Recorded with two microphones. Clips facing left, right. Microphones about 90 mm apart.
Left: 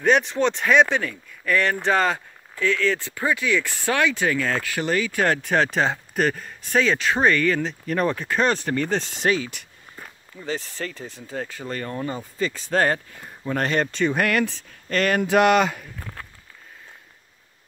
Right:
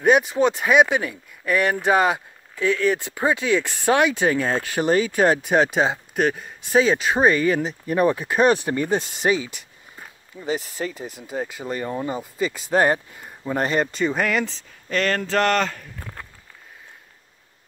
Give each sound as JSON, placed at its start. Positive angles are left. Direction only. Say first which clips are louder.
{"t": 0.0, "sound": "speech", "louder": "right 2 dB", "side_deg": -10}
{"t": 15.0, "sound": "speech", "louder": "left 4 dB", "side_deg": 10}
{"t": 16.0, "sound": "a sound", "louder": "even", "side_deg": 0}